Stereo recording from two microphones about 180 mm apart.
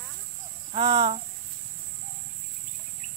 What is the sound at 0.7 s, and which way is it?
Speech, 25° right (ahead or behind).